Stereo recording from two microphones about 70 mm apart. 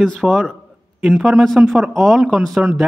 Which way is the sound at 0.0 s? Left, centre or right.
Centre.